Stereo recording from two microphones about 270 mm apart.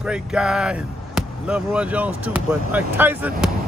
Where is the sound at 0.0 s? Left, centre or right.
Centre.